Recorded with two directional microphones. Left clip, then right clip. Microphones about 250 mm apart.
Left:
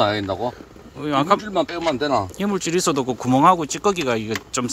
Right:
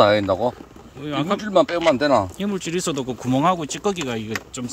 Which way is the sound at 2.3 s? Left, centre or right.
Centre.